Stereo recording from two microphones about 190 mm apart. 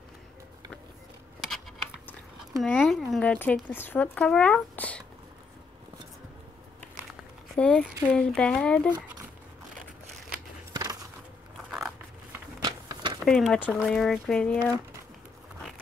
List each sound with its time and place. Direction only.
2.6 s speech: centre (ahead or behind)
7.5 s speech: 5° left (ahead or behind)
10.7 s a sound: 20° right (ahead or behind)
11.7 s scissors: 5° right (ahead or behind)
12.6 s a sound: 25° right (ahead or behind)
13.2 s speech: centre (ahead or behind)